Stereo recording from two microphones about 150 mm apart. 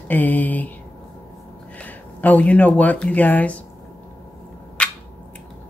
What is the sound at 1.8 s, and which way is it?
Speech, 10° left (ahead or behind).